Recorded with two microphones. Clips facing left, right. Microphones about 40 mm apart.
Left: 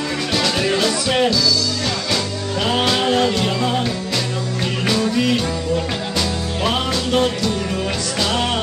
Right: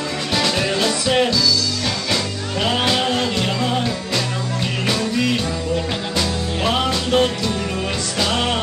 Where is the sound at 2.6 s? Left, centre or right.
Centre.